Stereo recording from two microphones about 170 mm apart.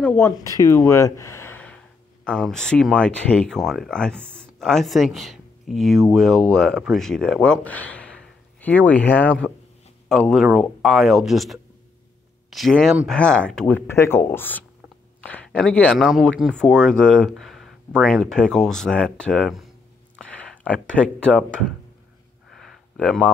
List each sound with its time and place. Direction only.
0.0 s speech: 10° left (ahead or behind)
0.4 s speech: 20° left (ahead or behind); by 21.7 s 5° left (ahead or behind)
22.5 s a sound: centre (ahead or behind)